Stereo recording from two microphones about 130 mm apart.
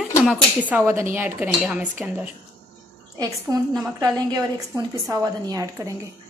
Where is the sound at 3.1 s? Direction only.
30° right (ahead or behind).